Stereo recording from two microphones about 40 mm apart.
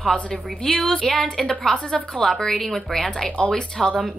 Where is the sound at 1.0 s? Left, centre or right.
Centre.